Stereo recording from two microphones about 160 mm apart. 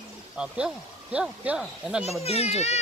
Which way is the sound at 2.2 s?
40° left (ahead or behind).